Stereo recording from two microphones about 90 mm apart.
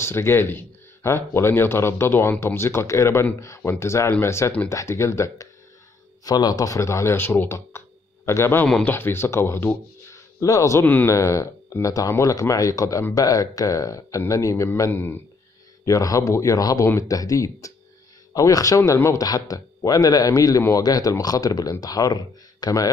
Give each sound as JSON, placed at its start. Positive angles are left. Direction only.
{"t": 0.0, "sound": "speech", "side_deg": 30}
{"t": 6.2, "sound": "speech", "side_deg": 45}
{"t": 14.9, "sound": "speech", "side_deg": 25}
{"t": 15.8, "sound": "speech", "side_deg": 40}
{"t": 16.8, "sound": "speech", "side_deg": 30}